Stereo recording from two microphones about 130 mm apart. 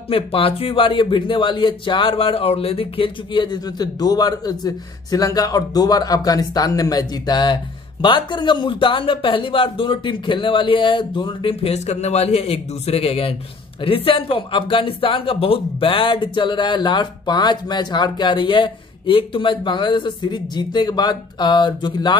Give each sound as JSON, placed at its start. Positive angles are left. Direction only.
{"t": 0.1, "sound": "a man's voice", "side_deg": 45}